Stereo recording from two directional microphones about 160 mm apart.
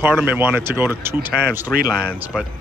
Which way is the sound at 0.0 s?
10° right (ahead or behind).